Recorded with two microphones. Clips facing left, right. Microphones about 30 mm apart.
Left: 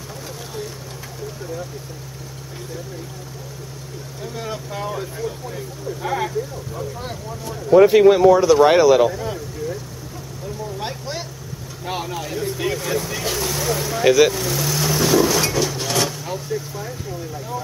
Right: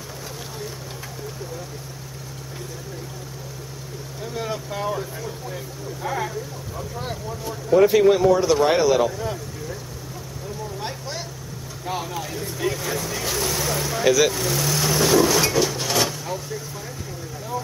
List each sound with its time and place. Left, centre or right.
4.2 s speech: centre
6.8 s speech: centre
7.7 s speech: left
8.4 s speech: centre
8.6 s speech: centre
9.2 s vehicle: centre
10.8 s vehicle: centre
11.8 s speech: centre
12.1 s speech: centre
14.3 s vehicle: centre
16.3 s speech: centre